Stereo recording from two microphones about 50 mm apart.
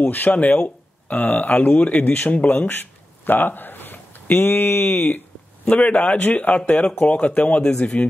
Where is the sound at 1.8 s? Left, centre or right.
Left.